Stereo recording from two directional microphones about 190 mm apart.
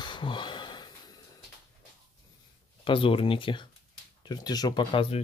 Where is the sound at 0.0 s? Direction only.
25° left (ahead or behind).